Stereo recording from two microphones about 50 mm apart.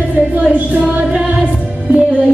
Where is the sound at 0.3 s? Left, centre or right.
Right.